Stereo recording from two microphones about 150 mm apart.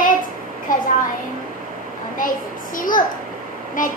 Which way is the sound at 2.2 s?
65° left (ahead or behind).